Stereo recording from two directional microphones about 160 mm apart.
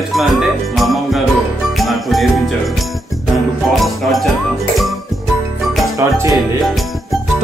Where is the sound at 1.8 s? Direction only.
Centre (ahead or behind).